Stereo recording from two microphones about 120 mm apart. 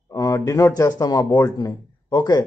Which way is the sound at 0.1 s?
25° left (ahead or behind).